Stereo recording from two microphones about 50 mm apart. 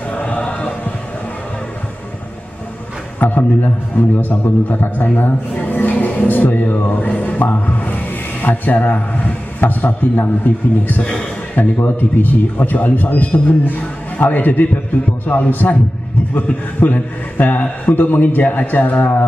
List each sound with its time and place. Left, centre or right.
0.1 s music: left
3.2 s a man's voice: left
7.0 s music: left
9.6 s a man's voice: left
11.0 s speech: centre
11.8 s a man's voice: left